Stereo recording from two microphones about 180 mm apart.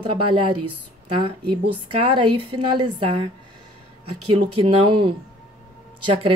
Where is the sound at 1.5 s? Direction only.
30° right (ahead or behind).